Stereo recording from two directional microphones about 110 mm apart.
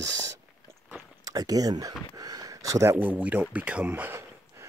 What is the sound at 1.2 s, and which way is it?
Speech, 35° right (ahead or behind).